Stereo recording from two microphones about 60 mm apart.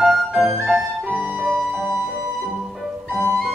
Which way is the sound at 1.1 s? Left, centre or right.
Right.